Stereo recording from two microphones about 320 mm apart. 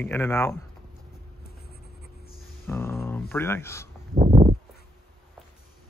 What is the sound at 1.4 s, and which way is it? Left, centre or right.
Writing, left.